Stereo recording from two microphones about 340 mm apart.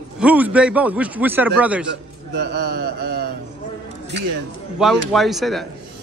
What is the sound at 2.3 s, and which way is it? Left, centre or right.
Mantra, right.